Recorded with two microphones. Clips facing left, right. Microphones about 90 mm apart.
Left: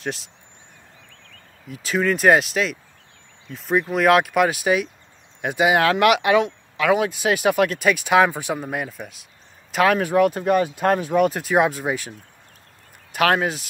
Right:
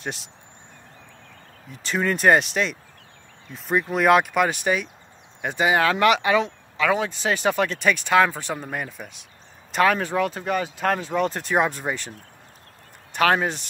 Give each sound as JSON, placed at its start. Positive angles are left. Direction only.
{"t": 0.0, "sound": "speech", "side_deg": 0}
{"t": 1.7, "sound": "speech", "side_deg": 5}